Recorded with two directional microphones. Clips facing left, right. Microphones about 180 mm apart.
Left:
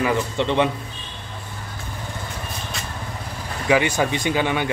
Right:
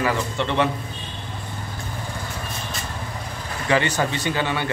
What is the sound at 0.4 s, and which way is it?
Speech, 15° left (ahead or behind).